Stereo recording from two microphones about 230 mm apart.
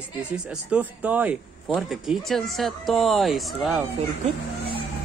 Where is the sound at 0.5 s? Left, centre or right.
Centre.